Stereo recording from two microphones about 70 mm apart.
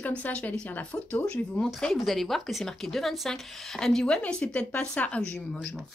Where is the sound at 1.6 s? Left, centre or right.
Centre.